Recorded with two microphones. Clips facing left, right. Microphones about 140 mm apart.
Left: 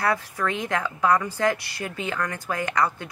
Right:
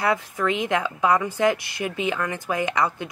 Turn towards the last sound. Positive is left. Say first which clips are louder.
# right 1 dB
turn(degrees=-20)  # may be behind; listen again after turning